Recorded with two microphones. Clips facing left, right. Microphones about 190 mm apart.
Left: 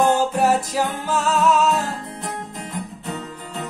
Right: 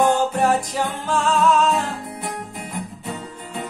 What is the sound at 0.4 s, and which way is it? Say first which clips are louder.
Music: left 1 dB; 5° left (ahead or behind).